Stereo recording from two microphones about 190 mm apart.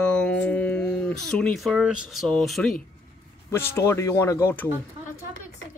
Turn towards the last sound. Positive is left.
turn(degrees=10)  # may be behind; listen again after turning